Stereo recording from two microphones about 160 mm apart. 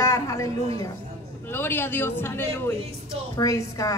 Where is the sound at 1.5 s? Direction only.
15° left (ahead or behind).